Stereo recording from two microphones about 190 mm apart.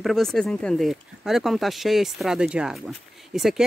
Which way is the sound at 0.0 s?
Centre (ahead or behind).